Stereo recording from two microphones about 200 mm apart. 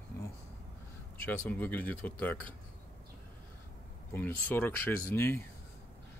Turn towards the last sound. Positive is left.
turn(degrees=10)  # may be behind; listen again after turning